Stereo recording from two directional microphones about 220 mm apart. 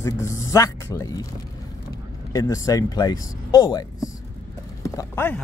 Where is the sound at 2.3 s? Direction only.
15° left (ahead or behind).